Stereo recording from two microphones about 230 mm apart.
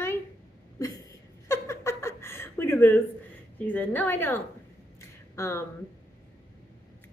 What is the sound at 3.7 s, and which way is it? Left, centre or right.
A woman's voice, centre.